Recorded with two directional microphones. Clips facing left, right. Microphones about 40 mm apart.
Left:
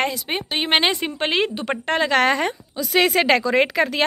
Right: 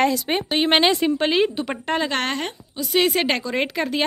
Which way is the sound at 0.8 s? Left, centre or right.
Left.